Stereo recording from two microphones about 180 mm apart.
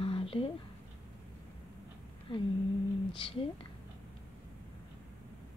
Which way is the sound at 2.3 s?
30° left (ahead or behind).